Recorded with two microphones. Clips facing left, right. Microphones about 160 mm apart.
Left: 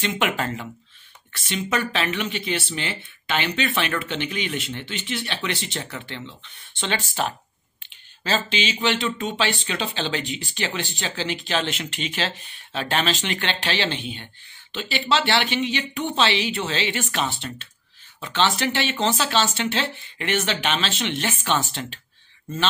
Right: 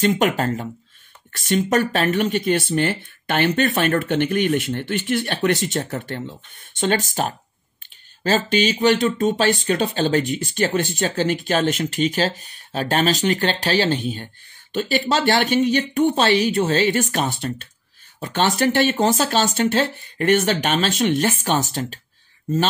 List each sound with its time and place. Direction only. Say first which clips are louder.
0.0 s speech: right 6 dB; 40° right (ahead or behind)